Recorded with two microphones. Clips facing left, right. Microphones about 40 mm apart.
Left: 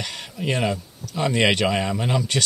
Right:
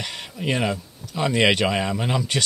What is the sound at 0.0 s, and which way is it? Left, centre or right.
Speech, centre.